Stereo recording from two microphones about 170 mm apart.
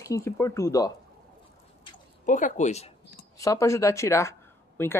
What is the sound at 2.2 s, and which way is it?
Speech, 50° left (ahead or behind).